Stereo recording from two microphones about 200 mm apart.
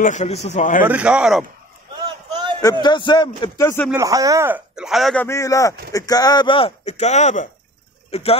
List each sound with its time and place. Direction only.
0.0 s speech: 35° left (ahead or behind)
0.8 s a man's voice: 5° right (ahead or behind)
2.6 s speech: 20° left (ahead or behind)
3.9 s a man's voice: 15° right (ahead or behind); by 8.4 s 30° left (ahead or behind)